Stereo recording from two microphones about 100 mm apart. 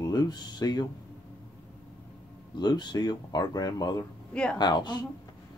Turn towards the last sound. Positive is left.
turn(degrees=45)  # may be behind; listen again after turning